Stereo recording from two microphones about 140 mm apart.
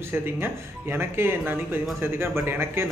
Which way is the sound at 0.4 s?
15° right (ahead or behind).